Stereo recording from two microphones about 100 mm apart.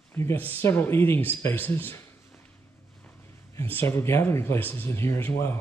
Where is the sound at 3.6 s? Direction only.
20° left (ahead or behind).